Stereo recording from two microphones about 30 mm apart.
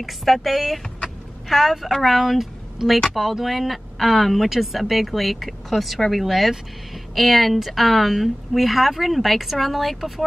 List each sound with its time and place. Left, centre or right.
0.0 s speech: centre
2.8 s speech: centre
3.4 s speech: centre